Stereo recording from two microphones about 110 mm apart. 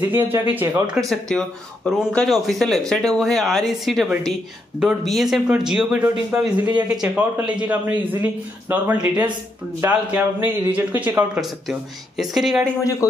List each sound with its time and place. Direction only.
0.1 s speech: 15° right (ahead or behind)
0.9 s speech: 5° left (ahead or behind); by 9.3 s 15° right (ahead or behind)
9.8 s speech: 25° right (ahead or behind); by 12.6 s 5° right (ahead or behind)